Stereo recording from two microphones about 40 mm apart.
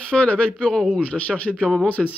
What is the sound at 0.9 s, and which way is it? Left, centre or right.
Speech, left.